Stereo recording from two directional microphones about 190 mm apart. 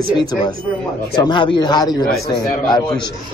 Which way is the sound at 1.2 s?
25° left (ahead or behind).